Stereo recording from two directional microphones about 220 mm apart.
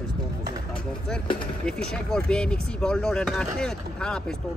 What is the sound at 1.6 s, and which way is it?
Speech, 5° left (ahead or behind).